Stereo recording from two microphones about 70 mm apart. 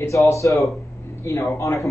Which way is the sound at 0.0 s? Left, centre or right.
Left.